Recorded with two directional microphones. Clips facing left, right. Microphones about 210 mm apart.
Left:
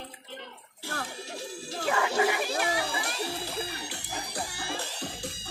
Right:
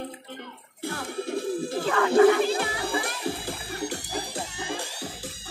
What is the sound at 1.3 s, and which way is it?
Bird, 55° right (ahead or behind).